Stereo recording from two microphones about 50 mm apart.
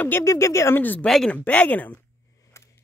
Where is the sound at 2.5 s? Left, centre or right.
Left.